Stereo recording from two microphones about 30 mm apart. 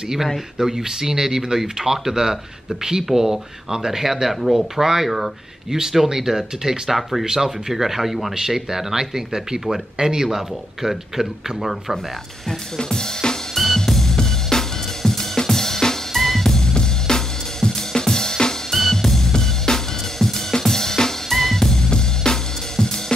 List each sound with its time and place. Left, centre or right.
0.6 s speech: centre
7.0 s speech: centre
7.2 s speech: centre
8.4 s speech: centre
12.7 s drum kit: left
13.8 s drum kit: centre
16.7 s music: left
18.7 s drum kit: centre
18.9 s music: centre
20.2 s drum kit: centre
21.3 s drum kit: centre
21.5 s music: centre